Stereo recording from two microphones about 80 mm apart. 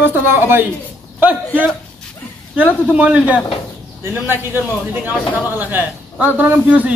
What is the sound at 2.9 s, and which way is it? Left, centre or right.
Speech, centre.